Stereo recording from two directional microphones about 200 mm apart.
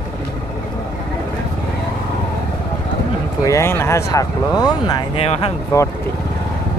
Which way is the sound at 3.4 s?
15° left (ahead or behind).